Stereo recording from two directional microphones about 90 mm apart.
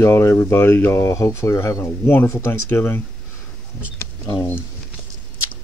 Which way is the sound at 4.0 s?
40° left (ahead or behind).